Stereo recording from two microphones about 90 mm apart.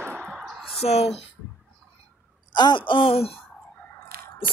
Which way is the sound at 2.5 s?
60° left (ahead or behind).